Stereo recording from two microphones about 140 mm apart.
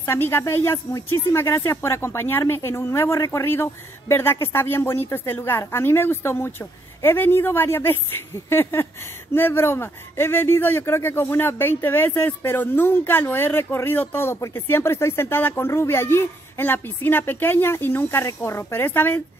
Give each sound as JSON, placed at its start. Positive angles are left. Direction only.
{"t": 0.0, "sound": "speech", "side_deg": 15}